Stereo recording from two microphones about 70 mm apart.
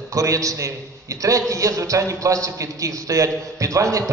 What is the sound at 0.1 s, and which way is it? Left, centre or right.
A man's voice, right.